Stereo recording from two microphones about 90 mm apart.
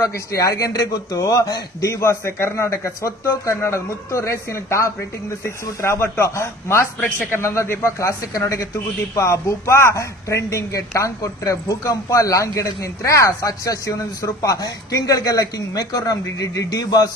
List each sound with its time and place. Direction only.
0.0 s a man's voice: 35° left (ahead or behind)